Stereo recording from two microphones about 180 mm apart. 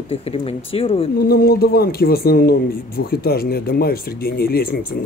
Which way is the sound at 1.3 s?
60° left (ahead or behind).